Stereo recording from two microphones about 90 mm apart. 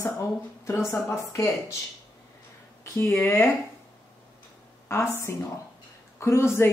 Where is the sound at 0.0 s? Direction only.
30° left (ahead or behind).